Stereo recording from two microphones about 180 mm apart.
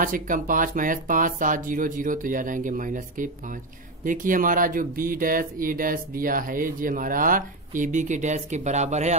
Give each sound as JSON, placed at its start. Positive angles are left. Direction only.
{"t": 0.0, "sound": "speech", "side_deg": -50}